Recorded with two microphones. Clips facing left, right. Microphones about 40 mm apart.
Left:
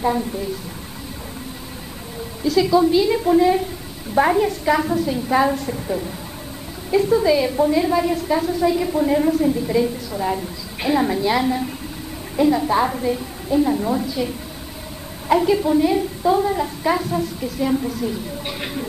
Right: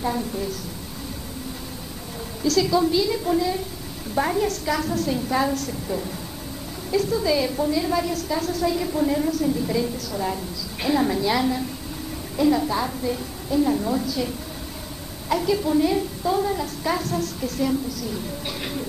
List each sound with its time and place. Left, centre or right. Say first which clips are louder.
0.0 s a woman's voice: left 4 dB; centre
2.4 s a woman's voice: left 4 dB; centre
9.5 s a woman's voice: left 4 dB; centre
12.6 s a woman's voice: left 6 dB; left
17.8 s a woman's voice: left 6 dB; left
18.6 s a woman's voice: left 2 dB; centre